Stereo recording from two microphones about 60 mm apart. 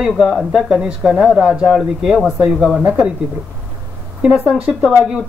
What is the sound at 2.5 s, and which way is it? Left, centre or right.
Speech, centre.